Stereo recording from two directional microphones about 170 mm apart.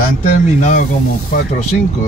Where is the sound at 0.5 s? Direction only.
45° left (ahead or behind).